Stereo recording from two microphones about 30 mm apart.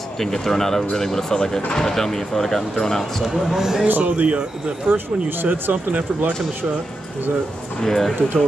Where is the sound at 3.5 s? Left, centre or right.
Centre.